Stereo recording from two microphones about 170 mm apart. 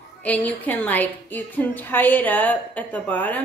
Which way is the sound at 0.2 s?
10° left (ahead or behind).